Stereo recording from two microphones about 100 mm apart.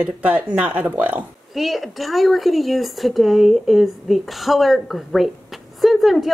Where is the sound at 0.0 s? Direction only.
15° right (ahead or behind).